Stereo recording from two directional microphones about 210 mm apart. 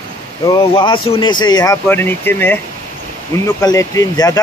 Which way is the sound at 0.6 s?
25° left (ahead or behind).